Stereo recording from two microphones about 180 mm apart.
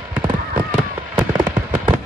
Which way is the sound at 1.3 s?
10° right (ahead or behind).